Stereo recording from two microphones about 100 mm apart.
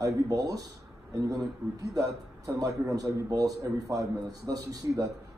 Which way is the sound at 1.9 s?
35° right (ahead or behind).